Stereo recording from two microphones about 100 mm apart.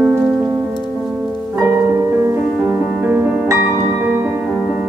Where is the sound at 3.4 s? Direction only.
25° right (ahead or behind).